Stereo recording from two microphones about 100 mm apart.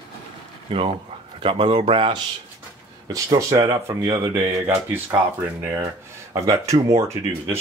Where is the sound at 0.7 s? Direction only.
65° right (ahead or behind).